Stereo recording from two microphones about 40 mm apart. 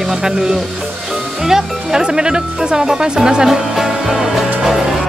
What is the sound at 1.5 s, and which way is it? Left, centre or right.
Speech, centre.